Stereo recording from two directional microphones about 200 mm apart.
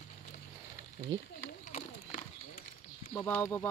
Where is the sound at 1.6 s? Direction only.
40° left (ahead or behind).